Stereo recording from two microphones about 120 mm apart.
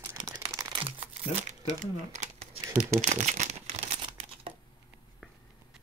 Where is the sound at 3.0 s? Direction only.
80° right.